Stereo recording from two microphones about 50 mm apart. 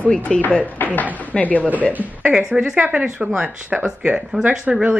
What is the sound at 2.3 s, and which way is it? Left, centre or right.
Speech, centre.